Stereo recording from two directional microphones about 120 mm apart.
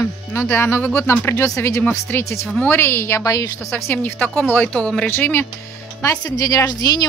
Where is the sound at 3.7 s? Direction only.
20° left (ahead or behind).